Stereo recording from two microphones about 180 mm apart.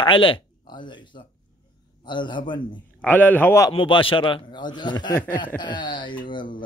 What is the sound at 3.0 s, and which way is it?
A man's voice, 10° left (ahead or behind).